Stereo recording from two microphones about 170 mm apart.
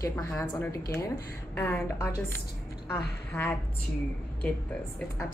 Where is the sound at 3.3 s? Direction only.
10° left (ahead or behind).